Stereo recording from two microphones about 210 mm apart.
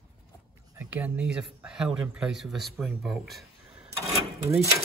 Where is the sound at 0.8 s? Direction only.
5° right (ahead or behind).